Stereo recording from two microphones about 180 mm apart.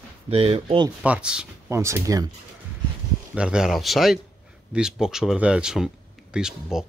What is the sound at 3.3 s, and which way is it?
Speech, 5° right (ahead or behind).